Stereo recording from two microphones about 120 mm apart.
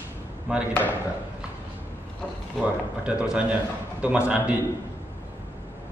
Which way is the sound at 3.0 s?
5° right (ahead or behind).